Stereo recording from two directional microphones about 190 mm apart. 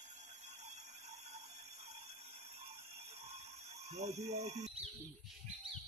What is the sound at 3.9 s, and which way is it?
Speech, 35° right (ahead or behind).